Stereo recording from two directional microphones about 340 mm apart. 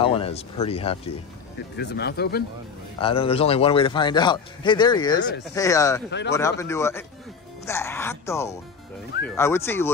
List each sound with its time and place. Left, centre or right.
0.0 s a man's voice: centre
1.8 s speech: left
3.0 s a man's voice: centre
6.0 s speech: left
6.6 s a man's voice: centre